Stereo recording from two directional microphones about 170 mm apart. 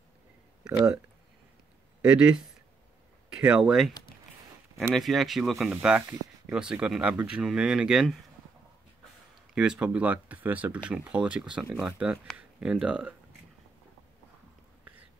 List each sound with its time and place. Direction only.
2.0 s speech: 5° right (ahead or behind)
4.9 s speech: centre (ahead or behind)
9.6 s speech: 5° right (ahead or behind)